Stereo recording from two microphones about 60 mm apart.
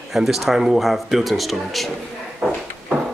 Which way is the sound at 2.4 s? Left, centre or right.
Centre.